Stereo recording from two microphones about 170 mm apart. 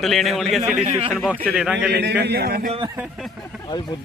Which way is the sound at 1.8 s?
85° right.